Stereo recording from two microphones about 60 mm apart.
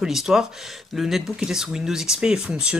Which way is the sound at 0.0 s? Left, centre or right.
Centre.